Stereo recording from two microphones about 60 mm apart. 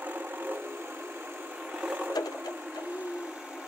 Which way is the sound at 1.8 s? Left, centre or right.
Right.